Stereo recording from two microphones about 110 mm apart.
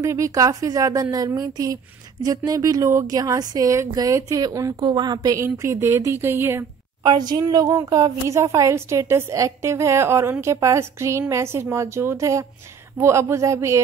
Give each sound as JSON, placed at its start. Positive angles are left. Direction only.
{"t": 0.0, "sound": "speech", "side_deg": -30}
{"t": 4.7, "sound": "a woman's voice", "side_deg": -45}
{"t": 7.0, "sound": "a woman's voice", "side_deg": -40}